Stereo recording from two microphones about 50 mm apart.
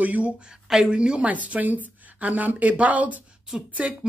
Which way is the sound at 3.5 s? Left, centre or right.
Centre.